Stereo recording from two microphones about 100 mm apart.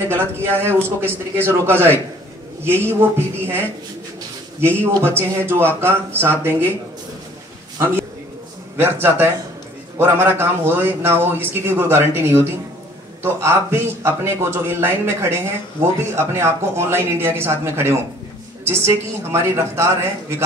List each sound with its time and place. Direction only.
0.1 s a man's voice: 20° right (ahead or behind)
4.7 s a man's voice: 25° right (ahead or behind)
8.7 s a man's voice: 20° right (ahead or behind)